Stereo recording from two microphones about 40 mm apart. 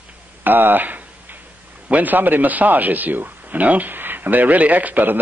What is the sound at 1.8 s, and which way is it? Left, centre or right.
Speech, right.